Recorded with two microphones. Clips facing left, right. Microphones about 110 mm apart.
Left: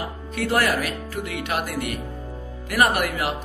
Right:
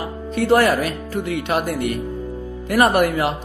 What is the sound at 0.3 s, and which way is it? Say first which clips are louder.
Speech: right 7 dB; 30° right (ahead or behind).